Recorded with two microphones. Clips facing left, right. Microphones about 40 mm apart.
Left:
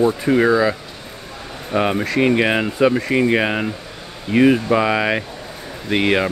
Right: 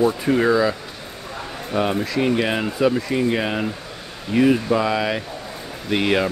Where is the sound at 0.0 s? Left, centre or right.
Centre.